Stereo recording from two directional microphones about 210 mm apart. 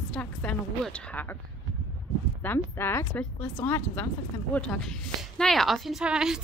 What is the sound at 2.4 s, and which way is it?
A woman's voice, 10° left (ahead or behind).